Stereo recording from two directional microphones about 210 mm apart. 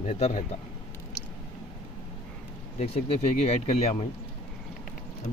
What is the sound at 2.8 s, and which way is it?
Speech, 30° left (ahead or behind).